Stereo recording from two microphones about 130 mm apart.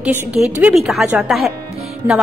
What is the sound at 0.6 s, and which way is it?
Speech, centre (ahead or behind).